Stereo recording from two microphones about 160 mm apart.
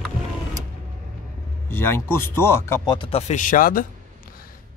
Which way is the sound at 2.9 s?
35° left (ahead or behind).